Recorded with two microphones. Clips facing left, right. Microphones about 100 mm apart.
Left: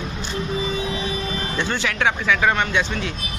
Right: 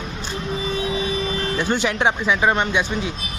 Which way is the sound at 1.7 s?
25° right (ahead or behind).